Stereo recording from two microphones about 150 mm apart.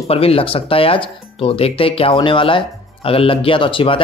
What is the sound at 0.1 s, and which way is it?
Speech, 40° left (ahead or behind).